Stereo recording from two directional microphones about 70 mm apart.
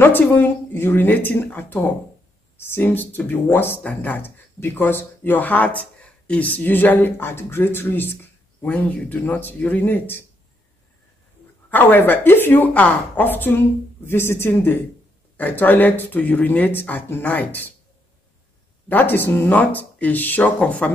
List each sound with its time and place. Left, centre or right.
0.0 s speech: left
8.6 s speech: centre
11.7 s speech: left
18.9 s speech: left